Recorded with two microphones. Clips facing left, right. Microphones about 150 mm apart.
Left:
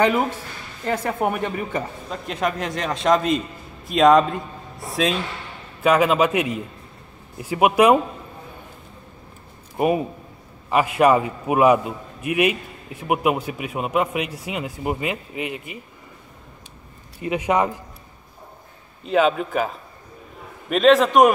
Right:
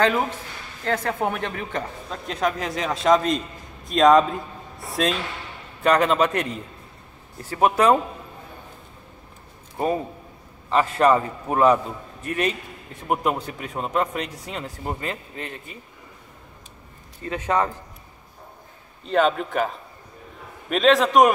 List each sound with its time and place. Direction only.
0.0 s a man's voice: 10° left (ahead or behind)
9.8 s a man's voice: 15° left (ahead or behind)
17.2 s a man's voice: 15° left (ahead or behind)
19.0 s a woman's voice: 5° left (ahead or behind)